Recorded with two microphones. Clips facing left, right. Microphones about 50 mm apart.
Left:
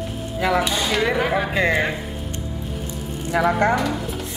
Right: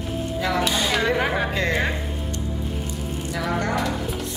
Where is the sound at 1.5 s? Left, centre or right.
Centre.